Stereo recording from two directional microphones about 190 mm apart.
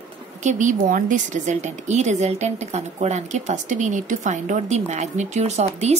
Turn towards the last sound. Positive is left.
turn(degrees=-35)  # may be behind; listen again after turning